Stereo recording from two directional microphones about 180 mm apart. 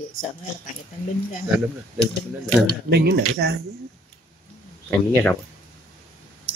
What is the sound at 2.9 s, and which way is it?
Speech, 65° right (ahead or behind).